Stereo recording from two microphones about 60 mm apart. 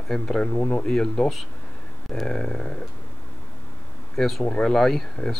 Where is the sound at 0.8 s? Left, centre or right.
Centre.